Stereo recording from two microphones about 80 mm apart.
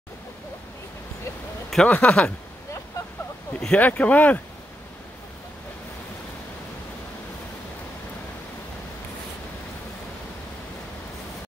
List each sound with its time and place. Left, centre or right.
1.9 s speech: centre
3.6 s speech: centre